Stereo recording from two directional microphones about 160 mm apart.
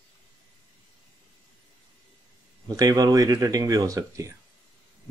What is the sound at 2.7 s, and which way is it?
Speech, 20° right (ahead or behind).